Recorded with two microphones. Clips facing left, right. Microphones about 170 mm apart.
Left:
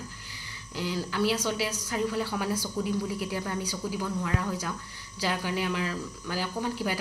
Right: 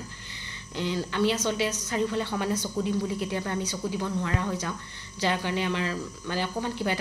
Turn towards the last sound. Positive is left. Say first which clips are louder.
# right 1 dB
turn(degrees=5)  # may be behind; listen again after turning